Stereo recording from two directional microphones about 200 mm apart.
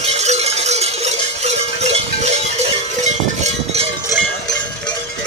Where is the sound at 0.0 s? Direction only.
30° right (ahead or behind).